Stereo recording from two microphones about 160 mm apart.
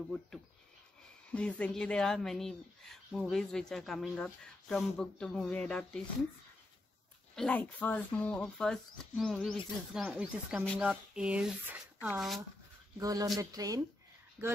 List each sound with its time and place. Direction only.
1.3 s speech: 5° left (ahead or behind)
7.3 s speech: 5° left (ahead or behind)
12.9 s speech: 20° right (ahead or behind)